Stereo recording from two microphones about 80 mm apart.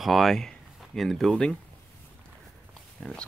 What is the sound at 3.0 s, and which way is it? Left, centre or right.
Speech, centre.